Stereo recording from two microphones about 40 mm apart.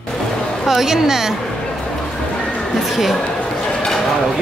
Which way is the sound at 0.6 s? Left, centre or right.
Centre.